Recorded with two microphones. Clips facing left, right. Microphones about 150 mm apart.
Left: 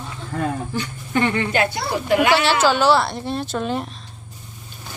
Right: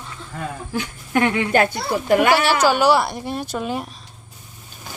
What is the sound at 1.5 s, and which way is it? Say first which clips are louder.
Speech: right 2 dB; 45° right (ahead or behind).